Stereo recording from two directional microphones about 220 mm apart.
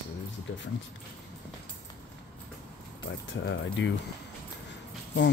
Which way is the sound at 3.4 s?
55° left (ahead or behind).